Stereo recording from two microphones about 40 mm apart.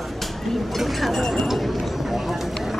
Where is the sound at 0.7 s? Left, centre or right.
Centre.